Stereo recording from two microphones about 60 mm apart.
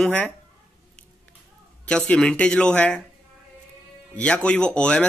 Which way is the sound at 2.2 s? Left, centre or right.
Centre.